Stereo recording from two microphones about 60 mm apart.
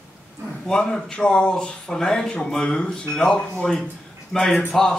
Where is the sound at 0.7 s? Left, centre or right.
Centre.